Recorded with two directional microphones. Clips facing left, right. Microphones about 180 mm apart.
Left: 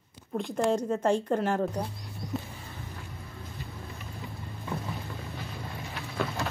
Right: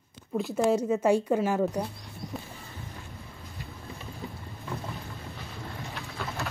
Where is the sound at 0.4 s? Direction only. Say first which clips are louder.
Right 2 dB; 5° right (ahead or behind).